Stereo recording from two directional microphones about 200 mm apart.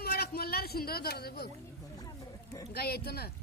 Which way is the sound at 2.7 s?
50° left (ahead or behind).